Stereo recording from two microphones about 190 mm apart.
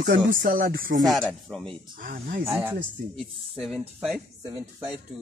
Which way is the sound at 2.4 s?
5° right (ahead or behind).